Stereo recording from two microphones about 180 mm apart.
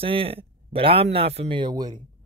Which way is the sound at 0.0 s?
30° right (ahead or behind).